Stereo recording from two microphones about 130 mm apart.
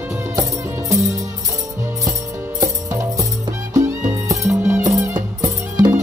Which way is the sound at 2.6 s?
25° right (ahead or behind).